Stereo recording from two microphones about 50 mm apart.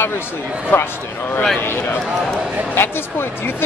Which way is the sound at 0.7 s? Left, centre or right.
Left.